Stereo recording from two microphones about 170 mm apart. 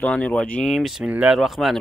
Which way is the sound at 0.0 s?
5° left (ahead or behind).